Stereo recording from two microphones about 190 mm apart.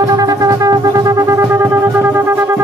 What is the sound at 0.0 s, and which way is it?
Wind instrument, 20° right (ahead or behind).